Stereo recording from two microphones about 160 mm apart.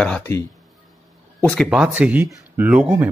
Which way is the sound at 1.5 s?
Centre (ahead or behind).